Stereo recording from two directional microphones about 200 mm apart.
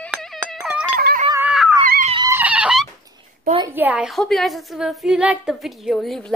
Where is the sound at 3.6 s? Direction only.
10° right (ahead or behind).